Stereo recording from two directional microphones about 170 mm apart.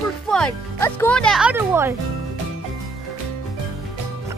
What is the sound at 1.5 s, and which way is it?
Speech, 15° right (ahead or behind).